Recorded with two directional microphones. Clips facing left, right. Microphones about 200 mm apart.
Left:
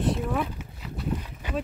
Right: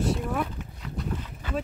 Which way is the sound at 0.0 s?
Centre (ahead or behind).